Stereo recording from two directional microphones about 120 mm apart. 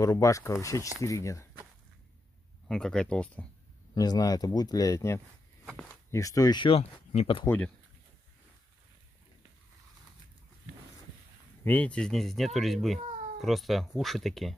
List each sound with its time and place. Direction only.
0.0 s speech: 30° left (ahead or behind)
2.7 s speech: 5° left (ahead or behind)
3.9 s speech: 35° left (ahead or behind)
6.7 s speech: 60° left (ahead or behind)
7.4 s speech: 15° left (ahead or behind)
11.6 s speech: 15° left (ahead or behind)